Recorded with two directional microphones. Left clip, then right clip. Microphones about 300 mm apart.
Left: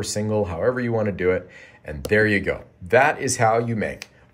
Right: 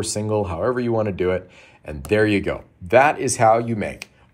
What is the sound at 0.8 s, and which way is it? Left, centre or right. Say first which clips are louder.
Speech: right 1 dB; right.